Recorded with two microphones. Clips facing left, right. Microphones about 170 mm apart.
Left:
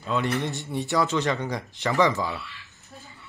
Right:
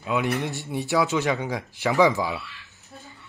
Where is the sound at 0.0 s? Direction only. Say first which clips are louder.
Right 1 dB; 10° right (ahead or behind).